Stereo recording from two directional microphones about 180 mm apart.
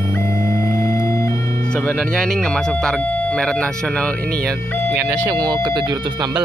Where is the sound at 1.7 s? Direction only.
5° left (ahead or behind).